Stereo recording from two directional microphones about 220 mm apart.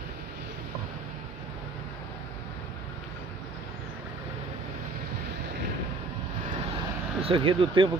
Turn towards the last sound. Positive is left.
turn(degrees=-25)  # may be behind; listen again after turning